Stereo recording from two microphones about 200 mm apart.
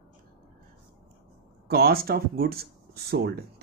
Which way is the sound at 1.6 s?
50° right (ahead or behind).